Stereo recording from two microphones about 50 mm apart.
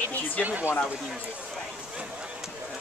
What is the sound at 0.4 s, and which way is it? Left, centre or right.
Speech, right.